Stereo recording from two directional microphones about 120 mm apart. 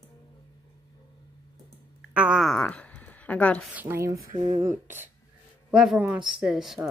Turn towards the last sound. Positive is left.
turn(degrees=-5)  # may be behind; listen again after turning